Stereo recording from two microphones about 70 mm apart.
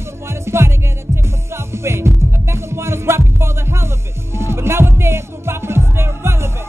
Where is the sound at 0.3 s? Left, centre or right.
Right.